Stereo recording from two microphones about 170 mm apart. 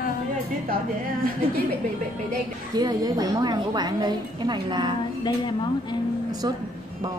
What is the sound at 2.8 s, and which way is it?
A woman's voice, 20° right (ahead or behind).